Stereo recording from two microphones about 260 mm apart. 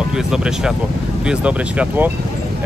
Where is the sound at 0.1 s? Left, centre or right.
Centre.